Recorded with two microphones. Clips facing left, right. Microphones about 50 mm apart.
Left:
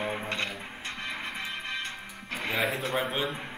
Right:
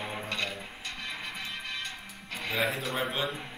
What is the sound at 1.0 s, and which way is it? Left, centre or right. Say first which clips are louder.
Music: left 3 dB; left.